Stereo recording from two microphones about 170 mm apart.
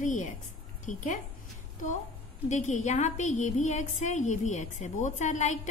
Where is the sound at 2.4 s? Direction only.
45° left (ahead or behind).